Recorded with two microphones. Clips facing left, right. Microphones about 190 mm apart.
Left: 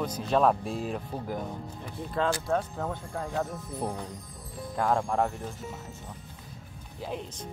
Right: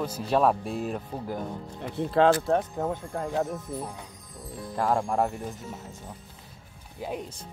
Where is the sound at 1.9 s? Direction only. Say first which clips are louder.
Right 8 dB; 70° right (ahead or behind).